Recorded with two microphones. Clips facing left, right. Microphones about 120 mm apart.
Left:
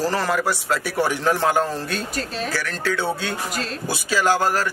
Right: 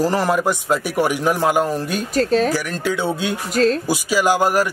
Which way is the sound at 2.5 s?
15° right (ahead or behind).